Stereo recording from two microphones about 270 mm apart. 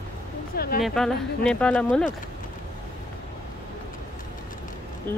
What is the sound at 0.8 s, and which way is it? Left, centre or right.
Speech, centre.